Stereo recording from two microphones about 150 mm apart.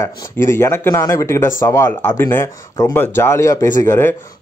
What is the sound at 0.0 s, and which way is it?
Speech, 20° left (ahead or behind).